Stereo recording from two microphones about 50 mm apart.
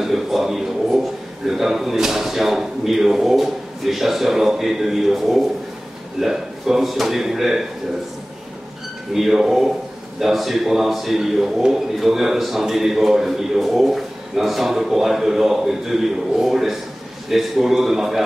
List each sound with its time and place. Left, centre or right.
0.0 s a man's voice: centre
9.1 s a man's voice: centre